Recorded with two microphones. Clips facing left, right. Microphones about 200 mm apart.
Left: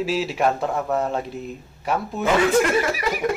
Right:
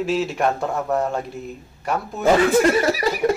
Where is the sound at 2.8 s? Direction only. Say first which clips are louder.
Right 4 dB; 35° right (ahead or behind).